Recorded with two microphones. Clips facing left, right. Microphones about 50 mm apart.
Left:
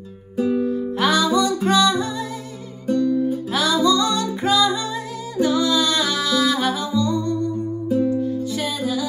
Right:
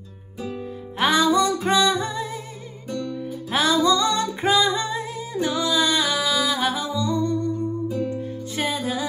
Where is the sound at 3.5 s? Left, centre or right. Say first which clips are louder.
Right 1 dB; right; by 6.7 s centre.